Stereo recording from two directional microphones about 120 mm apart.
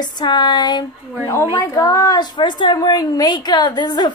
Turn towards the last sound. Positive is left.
turn(degrees=35)  # may be behind; listen again after turning